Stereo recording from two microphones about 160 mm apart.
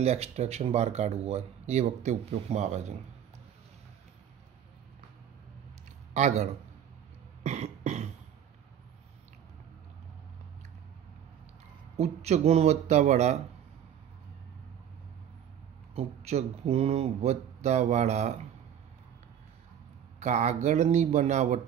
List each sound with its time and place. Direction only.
0.0 s speech: 40° right (ahead or behind)
6.1 s speech: 45° right (ahead or behind)
7.4 s cough: 45° right (ahead or behind)
12.0 s speech: 40° right (ahead or behind)
15.9 s speech: 40° right (ahead or behind)
20.2 s speech: 45° right (ahead or behind)